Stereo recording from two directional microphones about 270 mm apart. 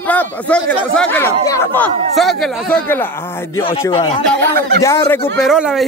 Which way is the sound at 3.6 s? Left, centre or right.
Centre.